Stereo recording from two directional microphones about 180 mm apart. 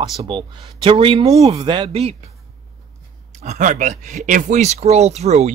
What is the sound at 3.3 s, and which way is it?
Speech, 40° right (ahead or behind).